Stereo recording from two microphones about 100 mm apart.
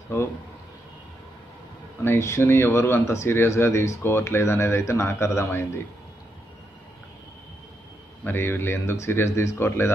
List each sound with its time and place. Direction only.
2.0 s speech: 30° left (ahead or behind)
8.2 s speech: 20° left (ahead or behind)